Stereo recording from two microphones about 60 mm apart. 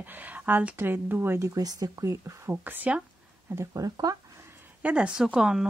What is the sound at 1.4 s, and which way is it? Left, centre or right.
Speech, right.